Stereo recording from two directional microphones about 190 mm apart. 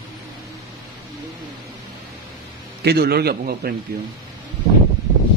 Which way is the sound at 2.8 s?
55° right (ahead or behind).